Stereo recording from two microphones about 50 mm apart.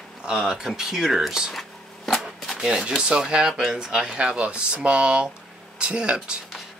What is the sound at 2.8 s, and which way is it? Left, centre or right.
Speech, centre.